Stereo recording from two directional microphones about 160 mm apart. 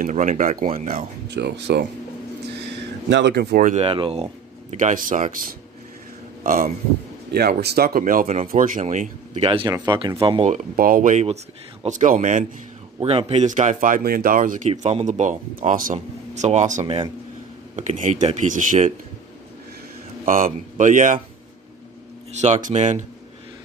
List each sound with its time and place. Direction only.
0.0 s speech: 50° right (ahead or behind); by 1.9 s 90° right
3.1 s speech: 90° right
3.6 s speech: 40° right (ahead or behind); by 6.7 s 60° right (ahead or behind)
7.3 s speech: 75° right (ahead or behind); by 9.1 s 55° right (ahead or behind)
9.4 s speech: 35° right (ahead or behind)
10.4 s speech: 55° right (ahead or behind)
13.0 s speech: 40° right (ahead or behind); by 14.7 s 55° right (ahead or behind)
14.7 s speech: 40° right (ahead or behind)
16.8 s speech: 35° right (ahead or behind)
17.7 s speech: 50° right (ahead or behind)
20.2 s speech: 55° right (ahead or behind)
22.3 s speech: 45° right (ahead or behind)